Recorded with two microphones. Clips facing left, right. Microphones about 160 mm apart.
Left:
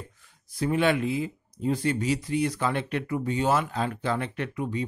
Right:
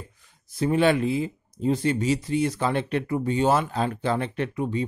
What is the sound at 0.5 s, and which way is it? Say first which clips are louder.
Speech: right 3 dB; 30° right (ahead or behind).